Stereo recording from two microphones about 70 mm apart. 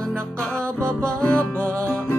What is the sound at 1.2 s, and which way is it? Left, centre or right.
Music, centre.